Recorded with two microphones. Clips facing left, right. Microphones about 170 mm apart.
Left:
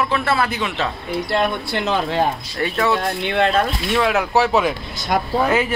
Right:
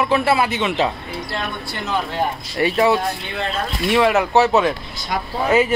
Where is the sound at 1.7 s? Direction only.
90° left.